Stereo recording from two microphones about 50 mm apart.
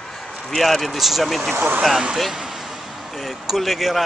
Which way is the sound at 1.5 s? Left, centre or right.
Right.